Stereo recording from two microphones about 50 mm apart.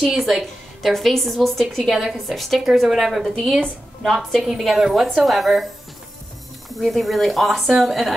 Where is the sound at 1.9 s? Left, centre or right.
Centre.